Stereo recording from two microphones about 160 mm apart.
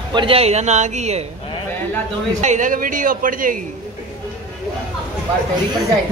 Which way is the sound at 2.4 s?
50° right (ahead or behind).